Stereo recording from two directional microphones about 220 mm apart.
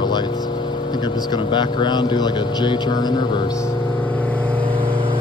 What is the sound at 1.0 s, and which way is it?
Speech, 20° left (ahead or behind).